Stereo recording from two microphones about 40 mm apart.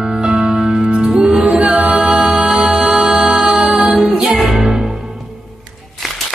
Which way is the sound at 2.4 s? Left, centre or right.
Centre.